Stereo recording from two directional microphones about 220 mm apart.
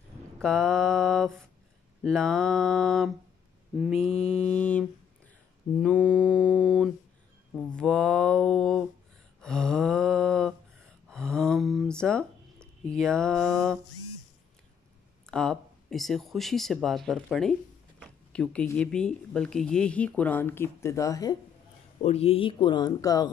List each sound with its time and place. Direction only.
0.4 s speech: centre (ahead or behind)
5.8 s mantra: 5° left (ahead or behind)
7.5 s speech: 5° left (ahead or behind)
9.4 s a sound: 5° left (ahead or behind)
12.9 s speech: 5° left (ahead or behind)
15.2 s speech: centre (ahead or behind)
22.0 s speech: 25° left (ahead or behind)